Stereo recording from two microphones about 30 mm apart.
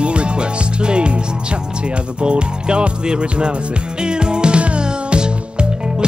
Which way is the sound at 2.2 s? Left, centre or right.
Right.